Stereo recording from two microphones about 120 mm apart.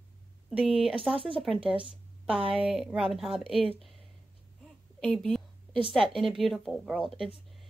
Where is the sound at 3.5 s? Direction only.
55° left (ahead or behind).